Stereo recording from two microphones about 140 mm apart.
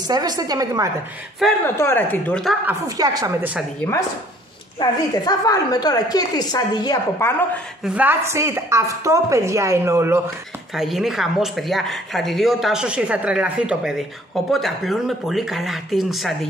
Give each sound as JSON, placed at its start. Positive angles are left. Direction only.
{"t": 0.0, "sound": "speech", "side_deg": -30}
{"t": 1.6, "sound": "speech", "side_deg": 15}
{"t": 3.0, "sound": "speech", "side_deg": -25}
{"t": 4.7, "sound": "a woman's voice", "side_deg": 30}
{"t": 7.2, "sound": "speech", "side_deg": 15}
{"t": 7.8, "sound": "speech", "side_deg": -10}
{"t": 10.7, "sound": "speech", "side_deg": 0}